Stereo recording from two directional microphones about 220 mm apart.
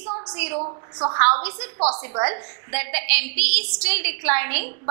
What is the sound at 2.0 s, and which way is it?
A woman's voice, 15° right (ahead or behind).